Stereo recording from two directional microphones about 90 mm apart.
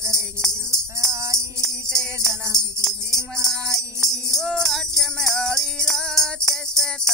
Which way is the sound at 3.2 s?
35° right (ahead or behind).